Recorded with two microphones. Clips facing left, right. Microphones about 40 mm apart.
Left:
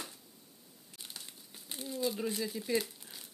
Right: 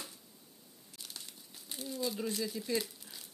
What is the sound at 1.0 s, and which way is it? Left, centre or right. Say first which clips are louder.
Crumpling: left 1 dB; centre.